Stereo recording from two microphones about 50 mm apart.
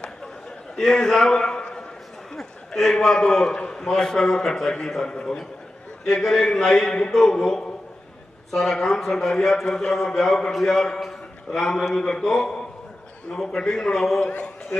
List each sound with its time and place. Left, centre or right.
0.7 s a man's voice: centre
6.0 s a man's voice: centre
11.9 s a man's voice: centre
13.7 s a man's voice: centre
14.2 s a man's voice: left